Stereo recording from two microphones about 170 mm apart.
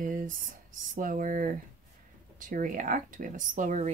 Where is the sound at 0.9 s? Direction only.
55° right (ahead or behind).